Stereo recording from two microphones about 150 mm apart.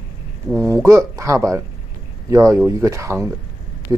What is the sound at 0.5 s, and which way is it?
A man's voice, 15° right (ahead or behind).